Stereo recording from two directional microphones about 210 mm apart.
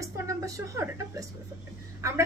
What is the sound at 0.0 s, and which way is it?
A woman's voice, 15° right (ahead or behind).